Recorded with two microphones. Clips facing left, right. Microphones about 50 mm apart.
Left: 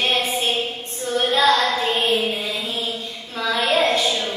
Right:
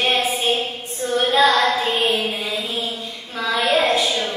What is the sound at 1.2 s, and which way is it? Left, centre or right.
Child singing, centre.